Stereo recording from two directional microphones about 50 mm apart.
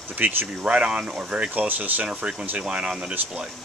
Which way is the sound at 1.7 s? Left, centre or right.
Right.